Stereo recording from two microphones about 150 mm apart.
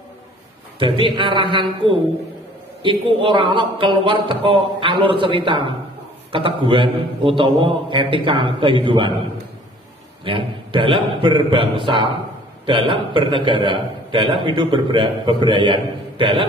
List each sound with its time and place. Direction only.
0.7 s a man's voice: 35° right (ahead or behind)
10.2 s a man's voice: 35° right (ahead or behind)